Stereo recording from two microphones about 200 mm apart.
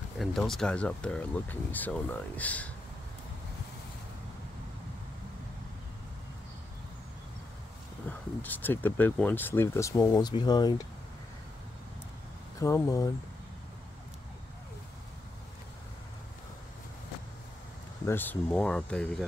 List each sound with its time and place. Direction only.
0.2 s speech: centre (ahead or behind)
8.4 s speech: 10° left (ahead or behind)
12.5 s speech: 15° left (ahead or behind)
18.0 s speech: 10° left (ahead or behind)